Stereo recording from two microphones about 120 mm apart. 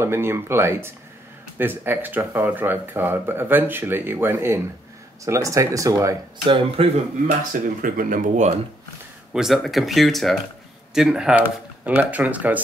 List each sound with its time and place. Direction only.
0.0 s speech: 20° right (ahead or behind)
6.4 s speech: 45° right (ahead or behind)
7.5 s speech: 90° right
9.3 s speech: centre (ahead or behind)